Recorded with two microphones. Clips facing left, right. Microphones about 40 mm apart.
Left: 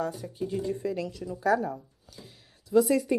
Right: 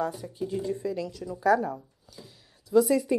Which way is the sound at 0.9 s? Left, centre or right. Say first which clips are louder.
Even; left.